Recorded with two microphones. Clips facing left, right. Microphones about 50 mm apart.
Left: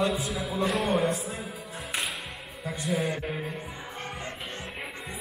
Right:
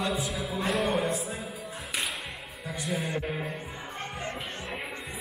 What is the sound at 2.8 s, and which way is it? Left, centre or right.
Speech, centre.